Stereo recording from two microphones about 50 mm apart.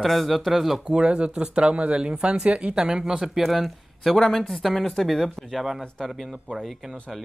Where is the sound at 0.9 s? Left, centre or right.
Right.